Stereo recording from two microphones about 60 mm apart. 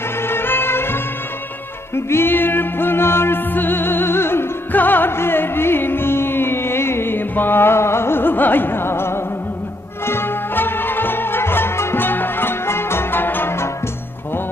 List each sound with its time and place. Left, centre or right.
0.3 s music: left